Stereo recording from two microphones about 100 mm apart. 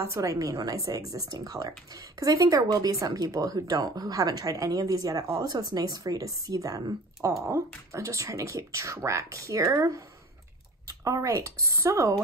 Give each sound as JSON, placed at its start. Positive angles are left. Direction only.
{"t": 0.0, "sound": "a woman's voice", "side_deg": -30}